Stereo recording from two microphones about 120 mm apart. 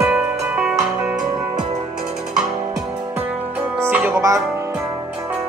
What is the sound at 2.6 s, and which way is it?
Music, 35° right (ahead or behind).